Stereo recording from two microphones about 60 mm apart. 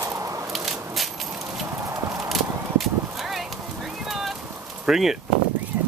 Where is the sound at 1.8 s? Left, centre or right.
Right.